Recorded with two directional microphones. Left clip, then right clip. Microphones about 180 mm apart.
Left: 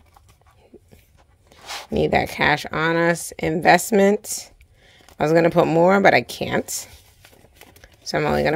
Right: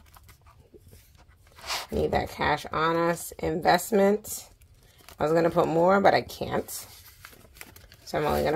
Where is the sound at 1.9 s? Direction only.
50° left (ahead or behind).